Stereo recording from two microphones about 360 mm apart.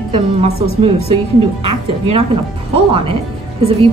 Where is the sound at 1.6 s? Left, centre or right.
Centre.